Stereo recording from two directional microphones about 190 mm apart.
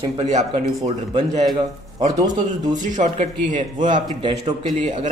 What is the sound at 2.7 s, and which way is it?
A man's voice, 40° right (ahead or behind).